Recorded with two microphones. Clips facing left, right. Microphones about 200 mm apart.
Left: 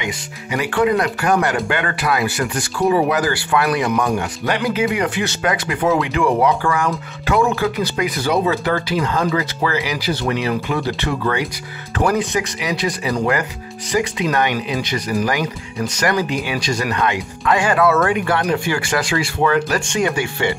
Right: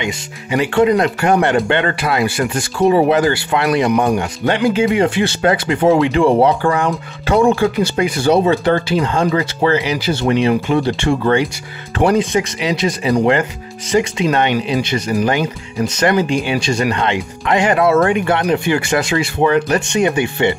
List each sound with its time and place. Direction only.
0.0 s speech: 25° right (ahead or behind)